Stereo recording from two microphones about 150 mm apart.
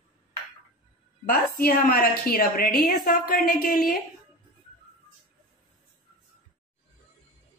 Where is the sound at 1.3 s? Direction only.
80° left.